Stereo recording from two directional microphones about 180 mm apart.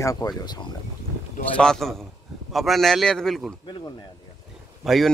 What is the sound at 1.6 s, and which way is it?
A man's voice, 5° left (ahead or behind).